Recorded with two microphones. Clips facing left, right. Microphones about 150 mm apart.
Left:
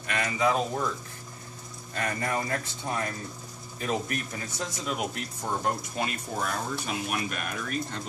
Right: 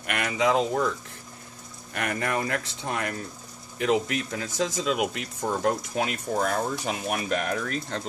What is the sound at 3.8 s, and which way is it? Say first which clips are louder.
Speech: right 6 dB; 85° right.